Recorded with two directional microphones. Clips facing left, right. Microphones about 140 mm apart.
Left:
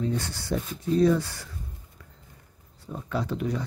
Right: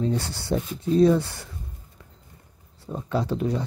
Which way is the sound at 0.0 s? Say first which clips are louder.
Right 3 dB; 30° right (ahead or behind).